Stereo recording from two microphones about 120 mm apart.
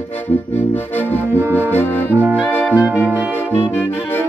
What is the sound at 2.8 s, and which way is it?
Music, 10° right (ahead or behind).